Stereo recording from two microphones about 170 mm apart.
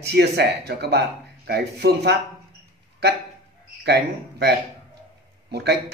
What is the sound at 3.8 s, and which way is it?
Speech, 70° right (ahead or behind).